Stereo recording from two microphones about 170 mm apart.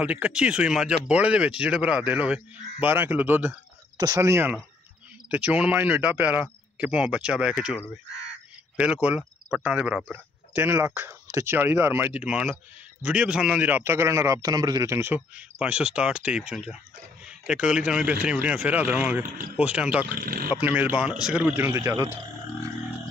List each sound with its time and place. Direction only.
0.0 s speech: 5° right (ahead or behind)
20.2 s speech: 55° right (ahead or behind)
20.5 s speech: 10° right (ahead or behind)